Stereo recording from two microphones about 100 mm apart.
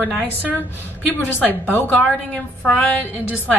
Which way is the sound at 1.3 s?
20° left (ahead or behind).